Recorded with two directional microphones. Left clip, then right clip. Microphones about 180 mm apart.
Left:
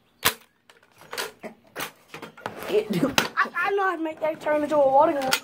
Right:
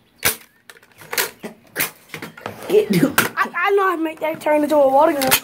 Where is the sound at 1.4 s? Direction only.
20° right (ahead or behind).